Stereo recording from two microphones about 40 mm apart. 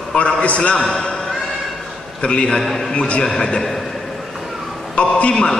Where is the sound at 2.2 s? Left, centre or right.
Left.